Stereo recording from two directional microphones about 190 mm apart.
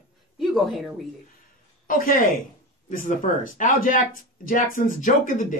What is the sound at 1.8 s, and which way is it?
Speech, 45° left (ahead or behind).